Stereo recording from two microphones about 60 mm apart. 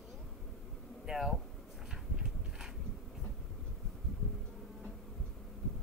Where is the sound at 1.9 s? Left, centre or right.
Centre.